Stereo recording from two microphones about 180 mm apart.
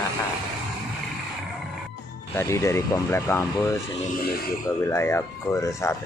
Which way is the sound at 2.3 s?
15° left (ahead or behind).